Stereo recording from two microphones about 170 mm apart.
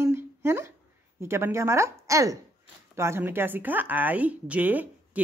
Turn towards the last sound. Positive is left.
turn(degrees=-10)  # may be behind; listen again after turning